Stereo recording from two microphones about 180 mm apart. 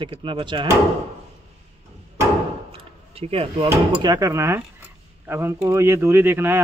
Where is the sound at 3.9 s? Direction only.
20° right (ahead or behind).